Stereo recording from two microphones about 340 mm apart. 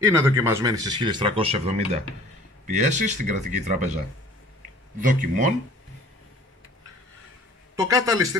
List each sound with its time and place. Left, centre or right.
0.2 s speech: centre
5.0 s speech: right
7.7 s speech: centre